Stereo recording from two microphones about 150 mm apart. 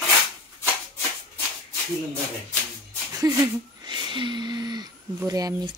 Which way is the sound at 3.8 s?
30° right (ahead or behind).